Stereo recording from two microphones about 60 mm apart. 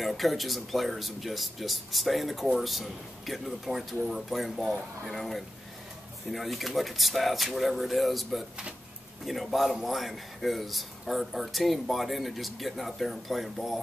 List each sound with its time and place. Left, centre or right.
0.0 s speech: centre